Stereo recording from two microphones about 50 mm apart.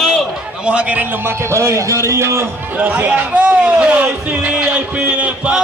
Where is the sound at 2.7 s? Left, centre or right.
Right.